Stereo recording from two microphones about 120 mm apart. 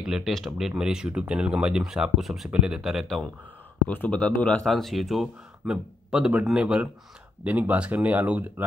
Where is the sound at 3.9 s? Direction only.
10° left (ahead or behind).